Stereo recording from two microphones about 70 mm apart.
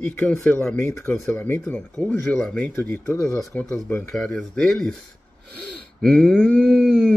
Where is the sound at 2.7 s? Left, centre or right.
Left.